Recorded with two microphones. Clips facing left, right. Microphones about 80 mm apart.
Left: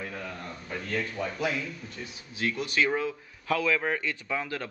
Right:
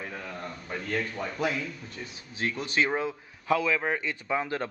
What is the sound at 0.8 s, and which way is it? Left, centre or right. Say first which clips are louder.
Speech: even; right.